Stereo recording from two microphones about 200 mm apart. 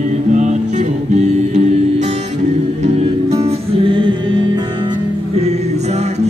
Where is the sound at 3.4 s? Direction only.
30° right (ahead or behind).